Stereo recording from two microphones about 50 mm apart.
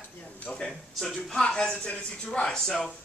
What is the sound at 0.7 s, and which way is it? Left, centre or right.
A man's voice, centre.